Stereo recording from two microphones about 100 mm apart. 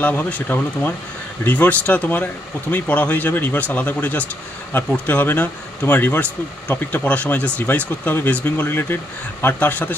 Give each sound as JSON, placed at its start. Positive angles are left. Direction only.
{"t": 0.0, "sound": "speech", "side_deg": 15}